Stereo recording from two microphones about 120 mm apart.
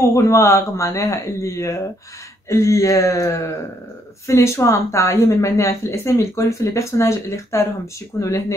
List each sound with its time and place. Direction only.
0.0 s speech: 25° left (ahead or behind)